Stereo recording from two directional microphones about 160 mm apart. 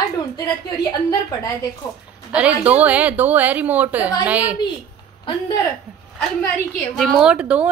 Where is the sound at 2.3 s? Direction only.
10° right (ahead or behind).